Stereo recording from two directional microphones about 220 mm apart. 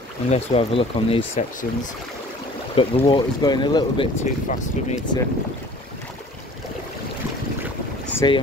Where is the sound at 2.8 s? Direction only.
25° left (ahead or behind).